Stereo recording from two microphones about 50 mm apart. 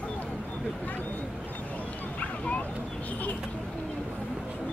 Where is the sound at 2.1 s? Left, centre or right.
Left.